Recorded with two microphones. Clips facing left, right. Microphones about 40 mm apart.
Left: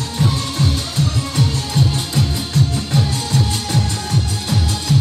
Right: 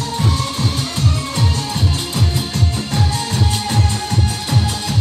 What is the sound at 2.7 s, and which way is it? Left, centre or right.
Music, centre.